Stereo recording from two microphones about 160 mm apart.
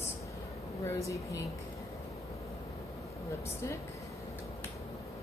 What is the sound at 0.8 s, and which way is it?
Speech, 20° left (ahead or behind).